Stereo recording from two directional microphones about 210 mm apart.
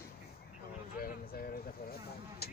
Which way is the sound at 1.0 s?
45° left (ahead or behind).